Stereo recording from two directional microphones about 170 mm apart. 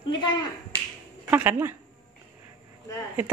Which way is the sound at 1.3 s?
10° right (ahead or behind).